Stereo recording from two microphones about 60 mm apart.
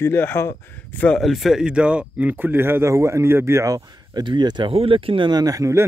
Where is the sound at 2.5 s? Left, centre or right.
Right.